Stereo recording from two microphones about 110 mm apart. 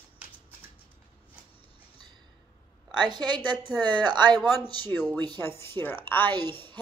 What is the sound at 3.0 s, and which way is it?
A woman's voice, 40° right (ahead or behind).